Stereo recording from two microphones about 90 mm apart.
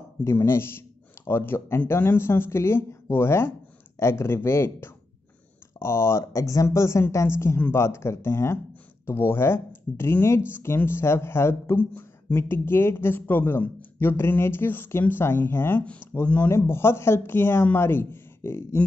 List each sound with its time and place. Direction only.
0.2 s speech: 30° left (ahead or behind)
15.8 s speech: 15° left (ahead or behind)
16.4 s speech: 30° left (ahead or behind)